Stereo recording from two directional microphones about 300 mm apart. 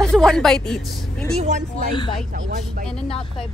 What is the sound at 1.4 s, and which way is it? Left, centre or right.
Speech, right.